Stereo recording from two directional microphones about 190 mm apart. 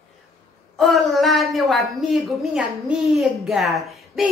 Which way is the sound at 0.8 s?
Centre (ahead or behind).